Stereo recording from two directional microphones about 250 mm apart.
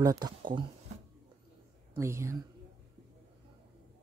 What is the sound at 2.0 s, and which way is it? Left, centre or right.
Speech, centre.